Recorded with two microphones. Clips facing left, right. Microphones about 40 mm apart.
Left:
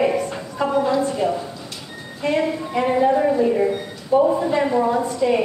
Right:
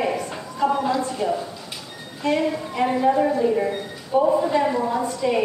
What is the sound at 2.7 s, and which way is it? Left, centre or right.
A woman's voice, centre.